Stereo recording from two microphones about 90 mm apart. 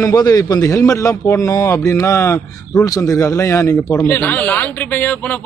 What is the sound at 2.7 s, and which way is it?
Speech, 40° left (ahead or behind).